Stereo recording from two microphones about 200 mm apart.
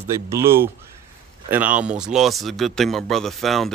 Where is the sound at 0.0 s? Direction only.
15° right (ahead or behind).